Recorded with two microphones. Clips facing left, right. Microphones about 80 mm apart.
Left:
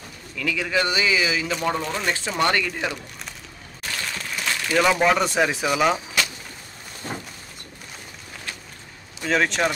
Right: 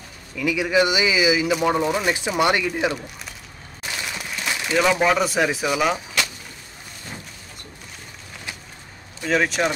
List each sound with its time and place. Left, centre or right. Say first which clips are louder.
0.4 s speech: right 4 dB; centre
3.8 s a sound: even; centre
4.7 s speech: even; centre
9.2 s speech: right 1 dB; centre